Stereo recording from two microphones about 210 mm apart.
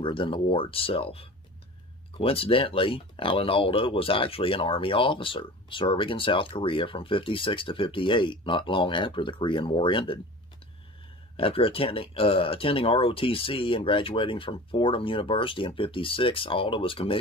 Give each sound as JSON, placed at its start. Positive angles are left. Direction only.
{"t": 0.0, "sound": "speech", "side_deg": 25}
{"t": 11.3, "sound": "speech", "side_deg": 25}